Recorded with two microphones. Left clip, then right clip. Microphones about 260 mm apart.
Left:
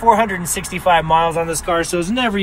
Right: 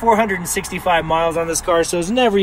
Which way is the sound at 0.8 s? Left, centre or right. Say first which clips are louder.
Left 3 dB; centre.